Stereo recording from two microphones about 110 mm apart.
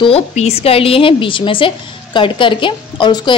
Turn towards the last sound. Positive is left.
turn(degrees=45)  # may be behind; listen again after turning